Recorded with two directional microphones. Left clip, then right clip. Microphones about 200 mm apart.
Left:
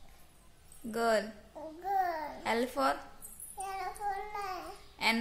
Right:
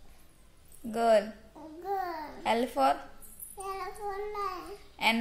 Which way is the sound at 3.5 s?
20° left (ahead or behind).